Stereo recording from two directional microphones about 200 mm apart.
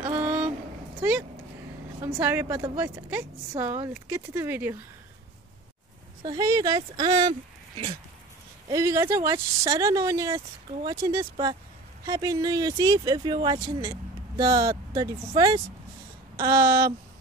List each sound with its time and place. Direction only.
0.0 s a sound: 10° right (ahead or behind)
2.0 s speech: 10° right (ahead or behind)
6.2 s speech: 20° right (ahead or behind)
8.6 s speech: 15° right (ahead or behind)